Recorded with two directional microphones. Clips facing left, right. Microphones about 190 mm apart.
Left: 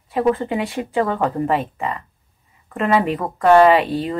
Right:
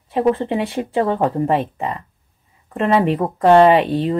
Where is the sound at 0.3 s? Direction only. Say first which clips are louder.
Right 1 dB; 30° right (ahead or behind).